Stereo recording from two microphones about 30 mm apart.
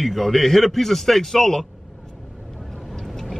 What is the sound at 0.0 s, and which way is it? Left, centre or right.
A woman's voice, centre.